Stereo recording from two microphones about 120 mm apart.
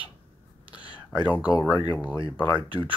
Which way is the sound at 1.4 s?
30° left (ahead or behind).